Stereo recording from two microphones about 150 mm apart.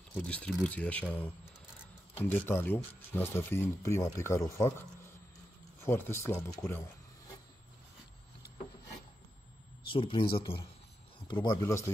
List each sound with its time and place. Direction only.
0.2 s speech: 10° left (ahead or behind)
5.8 s speech: 15° left (ahead or behind)
9.8 s speech: 35° left (ahead or behind)